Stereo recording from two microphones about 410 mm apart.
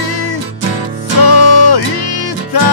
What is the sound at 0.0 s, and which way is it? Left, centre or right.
Music, left.